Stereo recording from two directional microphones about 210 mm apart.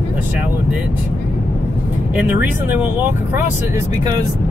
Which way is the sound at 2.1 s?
10° right (ahead or behind).